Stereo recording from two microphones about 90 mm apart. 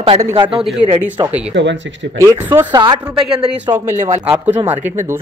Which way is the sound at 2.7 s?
55° right (ahead or behind).